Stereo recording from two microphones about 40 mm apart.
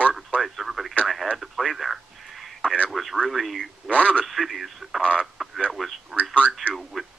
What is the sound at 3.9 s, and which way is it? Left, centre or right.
Speech, left.